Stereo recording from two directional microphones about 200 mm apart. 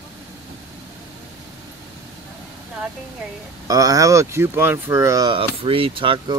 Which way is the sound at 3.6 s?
15° right (ahead or behind).